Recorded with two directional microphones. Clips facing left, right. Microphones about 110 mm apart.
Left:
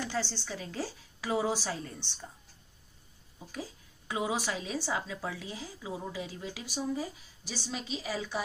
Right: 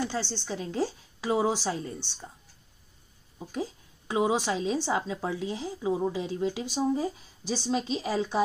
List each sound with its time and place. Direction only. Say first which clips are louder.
0.1 s a woman's voice: right 3 dB; 20° right (ahead or behind)
4.1 s a woman's voice: right 6 dB; 25° right (ahead or behind)